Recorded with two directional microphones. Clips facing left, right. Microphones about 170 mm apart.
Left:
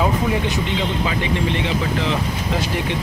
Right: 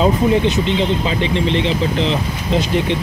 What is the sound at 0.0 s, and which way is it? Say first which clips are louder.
Speech: right 6 dB; 25° right (ahead or behind).